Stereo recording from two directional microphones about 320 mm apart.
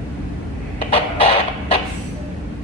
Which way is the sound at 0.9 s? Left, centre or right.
Centre.